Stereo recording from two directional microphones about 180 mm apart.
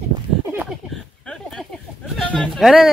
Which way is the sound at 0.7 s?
Centre (ahead or behind).